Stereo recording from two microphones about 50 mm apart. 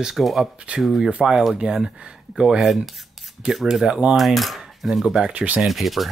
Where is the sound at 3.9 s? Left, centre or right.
Right.